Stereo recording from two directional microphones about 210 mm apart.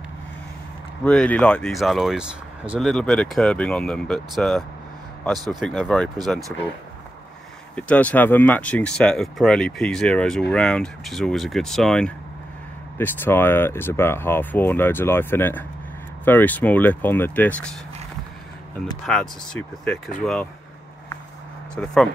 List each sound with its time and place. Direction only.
1.0 s speech: 5° left (ahead or behind)
7.7 s speech: 5° left (ahead or behind)
19.1 s speech: 5° left (ahead or behind)
21.7 s speech: 5° left (ahead or behind)